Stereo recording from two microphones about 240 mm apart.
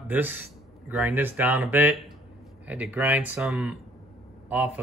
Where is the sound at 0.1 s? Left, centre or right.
Centre.